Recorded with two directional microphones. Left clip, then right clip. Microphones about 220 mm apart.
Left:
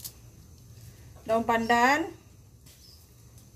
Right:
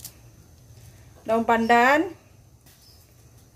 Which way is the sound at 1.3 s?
25° right (ahead or behind).